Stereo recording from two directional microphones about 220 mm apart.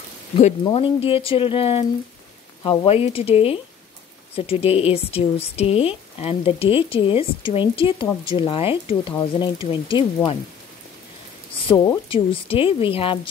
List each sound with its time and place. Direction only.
0.7 s speech: 25° left (ahead or behind)
11.6 s speech: 20° left (ahead or behind)